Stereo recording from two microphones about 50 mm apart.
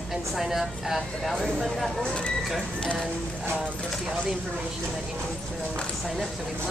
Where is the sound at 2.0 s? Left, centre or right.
Left.